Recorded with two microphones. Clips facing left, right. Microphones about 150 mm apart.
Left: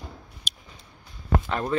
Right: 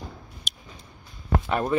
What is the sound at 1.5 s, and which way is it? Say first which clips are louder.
Speech: right 5 dB; 15° right (ahead or behind).